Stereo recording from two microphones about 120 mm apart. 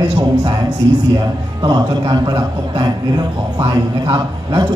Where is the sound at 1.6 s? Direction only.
35° right (ahead or behind).